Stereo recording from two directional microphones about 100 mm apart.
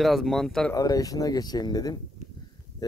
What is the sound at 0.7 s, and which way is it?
Speech, 40° left (ahead or behind).